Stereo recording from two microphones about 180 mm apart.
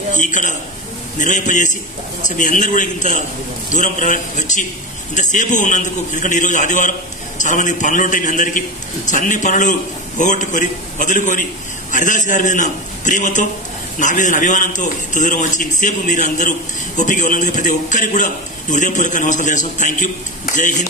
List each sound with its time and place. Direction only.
0.1 s a man's voice: 45° left (ahead or behind)